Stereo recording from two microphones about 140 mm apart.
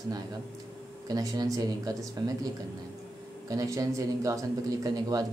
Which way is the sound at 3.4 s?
25° right (ahead or behind).